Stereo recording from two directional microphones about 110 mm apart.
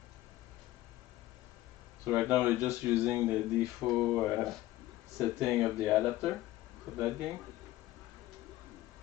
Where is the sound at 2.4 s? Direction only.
15° right (ahead or behind); by 6.3 s centre (ahead or behind).